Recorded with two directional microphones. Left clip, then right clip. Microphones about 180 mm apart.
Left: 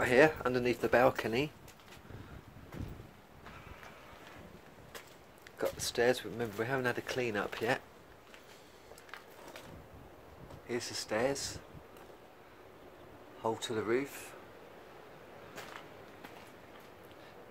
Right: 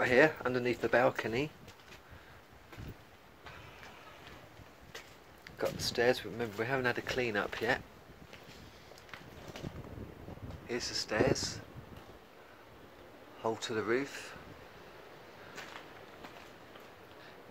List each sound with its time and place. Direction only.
0.0 s speech: 5° left (ahead or behind)
5.6 s speech: centre (ahead or behind)
10.7 s speech: centre (ahead or behind)
13.4 s speech: centre (ahead or behind)